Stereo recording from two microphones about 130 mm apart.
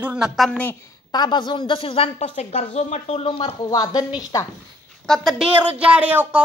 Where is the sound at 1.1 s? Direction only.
35° left (ahead or behind); by 3.3 s 55° left (ahead or behind).